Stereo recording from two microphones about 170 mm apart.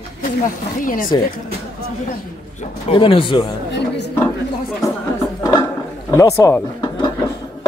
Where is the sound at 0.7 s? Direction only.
55° left (ahead or behind).